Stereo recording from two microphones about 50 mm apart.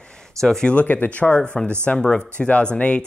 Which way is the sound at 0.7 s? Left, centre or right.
Left.